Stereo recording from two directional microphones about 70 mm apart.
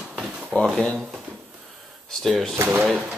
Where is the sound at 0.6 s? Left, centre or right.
Centre.